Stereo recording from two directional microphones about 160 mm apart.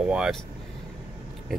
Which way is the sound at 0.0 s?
5° right (ahead or behind).